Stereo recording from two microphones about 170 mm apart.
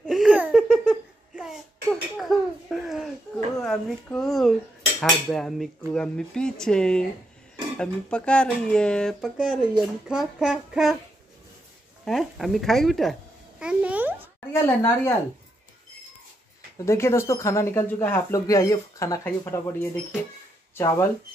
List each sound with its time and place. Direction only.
0.0 s laughter: centre (ahead or behind)
3.6 s speech: 5° left (ahead or behind)
12.0 s speech: centre (ahead or behind)
13.6 s a sound: 5° right (ahead or behind)
14.5 s speech: 15° left (ahead or behind)
16.7 s speech: 15° left (ahead or behind)